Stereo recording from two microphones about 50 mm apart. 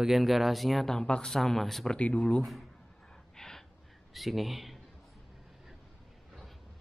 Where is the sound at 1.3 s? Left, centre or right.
Centre.